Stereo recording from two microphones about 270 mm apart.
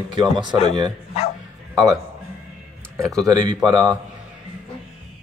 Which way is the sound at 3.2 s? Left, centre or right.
Centre.